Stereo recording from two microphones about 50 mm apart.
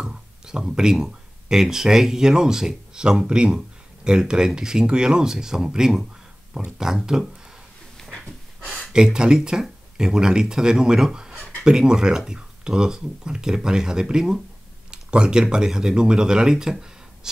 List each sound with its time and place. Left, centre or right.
0.0 s speech: centre
8.0 s dog: centre
8.9 s speech: centre